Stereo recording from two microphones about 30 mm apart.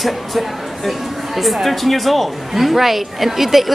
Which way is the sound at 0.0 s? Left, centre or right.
Centre.